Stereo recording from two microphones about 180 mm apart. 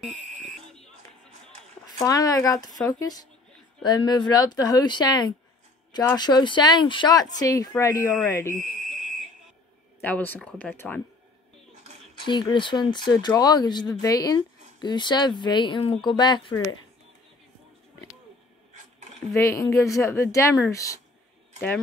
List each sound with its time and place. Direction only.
0.1 s fire alarm: 40° right (ahead or behind)
2.0 s speech: 20° left (ahead or behind)
8.8 s fire alarm: 40° right (ahead or behind)
9.9 s speech: 10° left (ahead or behind)
12.3 s speech: 25° left (ahead or behind)
19.3 s speech: 15° left (ahead or behind)